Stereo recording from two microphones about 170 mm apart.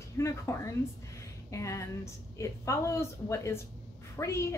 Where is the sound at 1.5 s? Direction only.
15° left (ahead or behind).